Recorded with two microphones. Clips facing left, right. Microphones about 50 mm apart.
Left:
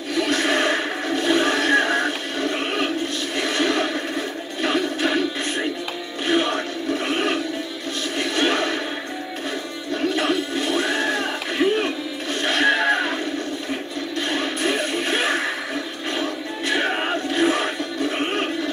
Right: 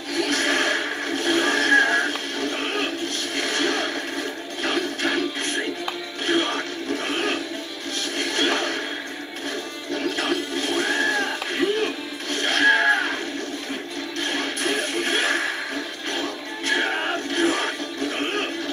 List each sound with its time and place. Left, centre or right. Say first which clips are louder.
0.2 s a sound: left 2 dB; left
3.3 s neigh: left 3 dB; left
4.6 s music: left 3 dB; left
6.2 s a sound: left 2 dB; left
10.1 s music: left 3 dB; left
14.3 s music: left 2 dB; left